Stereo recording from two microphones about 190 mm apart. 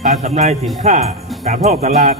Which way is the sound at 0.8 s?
35° right (ahead or behind).